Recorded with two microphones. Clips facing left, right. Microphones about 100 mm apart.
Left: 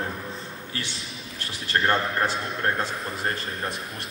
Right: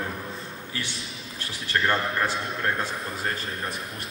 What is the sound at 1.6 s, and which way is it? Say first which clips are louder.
A man's voice: left 1 dB; 30° left (ahead or behind).